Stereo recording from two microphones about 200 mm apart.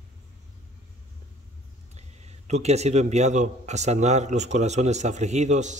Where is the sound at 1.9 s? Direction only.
35° right (ahead or behind).